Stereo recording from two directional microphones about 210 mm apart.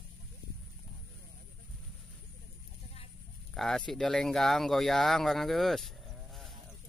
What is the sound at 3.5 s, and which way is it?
Speech, centre (ahead or behind).